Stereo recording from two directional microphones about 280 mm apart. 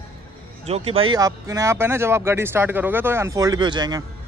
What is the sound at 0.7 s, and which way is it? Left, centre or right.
Speech, right.